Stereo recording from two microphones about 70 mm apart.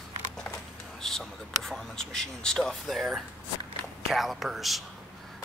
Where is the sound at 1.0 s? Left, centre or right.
Centre.